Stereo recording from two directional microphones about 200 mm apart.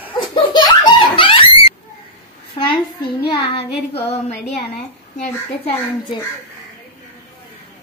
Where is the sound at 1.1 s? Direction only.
25° left (ahead or behind).